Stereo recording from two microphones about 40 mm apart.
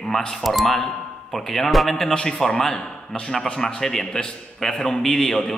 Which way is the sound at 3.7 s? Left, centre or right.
Centre.